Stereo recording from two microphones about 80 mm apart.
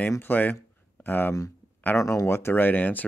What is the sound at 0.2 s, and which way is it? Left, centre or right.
Speech, left.